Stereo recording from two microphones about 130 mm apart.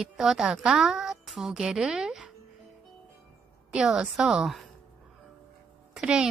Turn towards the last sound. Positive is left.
turn(degrees=-5)  # may be behind; listen again after turning